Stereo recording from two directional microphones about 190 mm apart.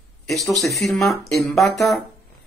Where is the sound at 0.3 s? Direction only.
Centre (ahead or behind).